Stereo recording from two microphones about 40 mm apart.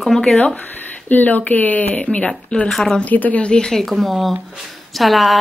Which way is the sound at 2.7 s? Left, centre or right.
Centre.